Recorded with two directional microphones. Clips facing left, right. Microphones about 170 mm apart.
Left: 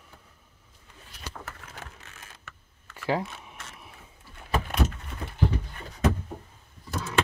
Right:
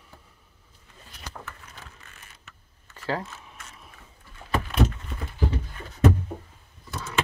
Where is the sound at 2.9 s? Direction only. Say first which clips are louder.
Left 2 dB; 15° left (ahead or behind).